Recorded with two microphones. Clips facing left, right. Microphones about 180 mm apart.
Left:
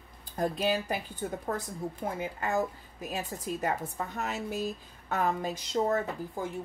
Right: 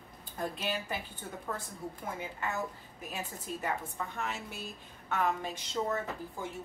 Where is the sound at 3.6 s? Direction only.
40° left (ahead or behind).